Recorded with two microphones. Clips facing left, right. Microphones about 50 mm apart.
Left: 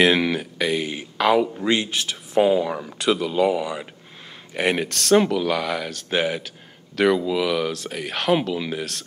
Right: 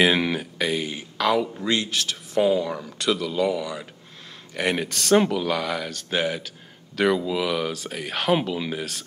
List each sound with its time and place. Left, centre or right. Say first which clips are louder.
0.0 s speech: left 2 dB; centre
1.1 s a man's voice: left 4 dB; centre
4.6 s speech: left 3 dB; centre
4.8 s speech: left 1 dB; centre